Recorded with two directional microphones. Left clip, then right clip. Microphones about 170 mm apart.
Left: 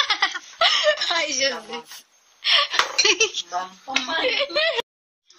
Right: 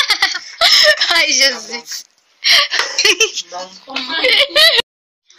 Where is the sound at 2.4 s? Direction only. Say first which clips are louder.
Right 7 dB; centre (ahead or behind).